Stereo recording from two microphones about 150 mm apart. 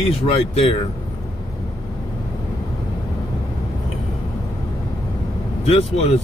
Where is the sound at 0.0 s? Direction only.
40° left (ahead or behind).